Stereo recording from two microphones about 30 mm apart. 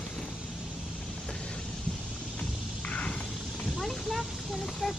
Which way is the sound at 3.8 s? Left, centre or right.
Centre.